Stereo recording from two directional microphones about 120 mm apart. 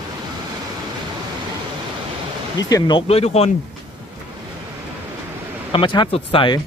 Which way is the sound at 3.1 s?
55° left (ahead or behind).